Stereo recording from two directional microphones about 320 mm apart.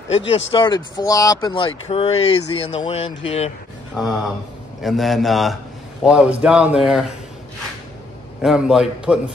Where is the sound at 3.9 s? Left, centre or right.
Centre.